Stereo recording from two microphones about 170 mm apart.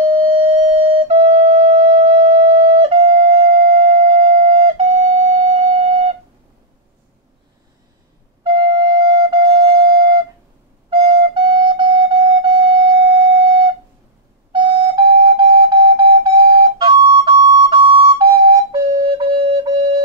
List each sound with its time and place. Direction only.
0.0 s flute: 35° right (ahead or behind)
8.9 s flute: 25° right (ahead or behind)